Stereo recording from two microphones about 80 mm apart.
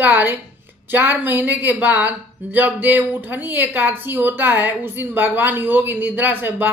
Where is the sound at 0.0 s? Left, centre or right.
Right.